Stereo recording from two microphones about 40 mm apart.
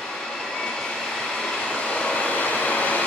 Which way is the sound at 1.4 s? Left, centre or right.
Centre.